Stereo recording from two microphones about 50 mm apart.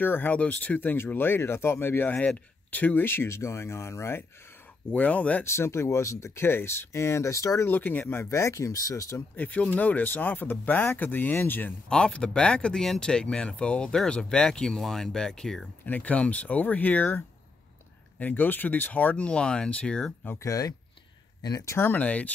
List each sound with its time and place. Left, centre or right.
0.0 s speech: left
4.9 s speech: left
5.4 s speech: left
6.4 s speech: left
6.9 s speech: left
7.6 s speech: left
8.3 s speech: left
9.4 s speech: left
11.9 s speech: centre
15.8 s speech: left
18.2 s speech: left; by 20.2 s centre
21.9 s speech: left